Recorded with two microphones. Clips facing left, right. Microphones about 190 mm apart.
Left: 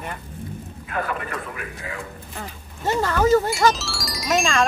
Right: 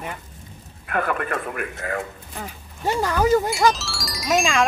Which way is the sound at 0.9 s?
60° right (ahead or behind).